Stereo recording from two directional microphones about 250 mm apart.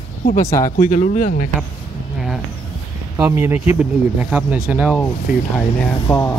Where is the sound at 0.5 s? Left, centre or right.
Centre.